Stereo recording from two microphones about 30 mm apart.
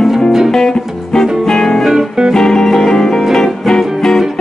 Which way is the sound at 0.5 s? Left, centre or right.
Centre.